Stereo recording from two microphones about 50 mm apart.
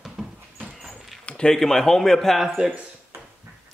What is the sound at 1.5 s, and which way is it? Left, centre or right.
A man's voice, centre.